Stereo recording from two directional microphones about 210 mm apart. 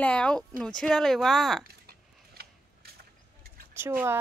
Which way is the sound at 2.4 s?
50° right (ahead or behind).